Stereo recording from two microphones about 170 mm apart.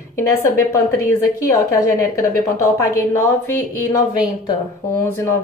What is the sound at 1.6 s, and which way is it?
A woman's voice, 20° left (ahead or behind).